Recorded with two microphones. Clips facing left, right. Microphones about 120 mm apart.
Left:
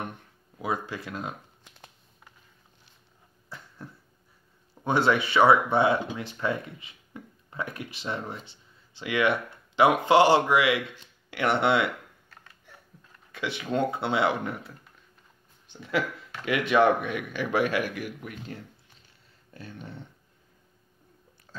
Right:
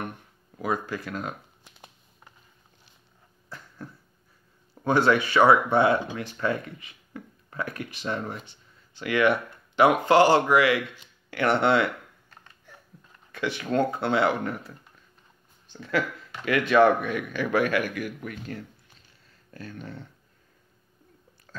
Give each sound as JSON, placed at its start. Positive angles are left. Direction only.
{"t": 0.6, "sound": "speech", "side_deg": 25}
{"t": 3.4, "sound": "a sound", "side_deg": 25}
{"t": 4.8, "sound": "speech", "side_deg": 25}
{"t": 13.3, "sound": "speech", "side_deg": 25}
{"t": 15.7, "sound": "speech", "side_deg": 20}